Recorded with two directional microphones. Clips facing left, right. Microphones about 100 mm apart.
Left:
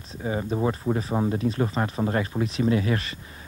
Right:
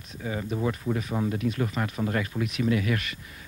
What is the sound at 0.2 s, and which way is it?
Speech, 30° left (ahead or behind).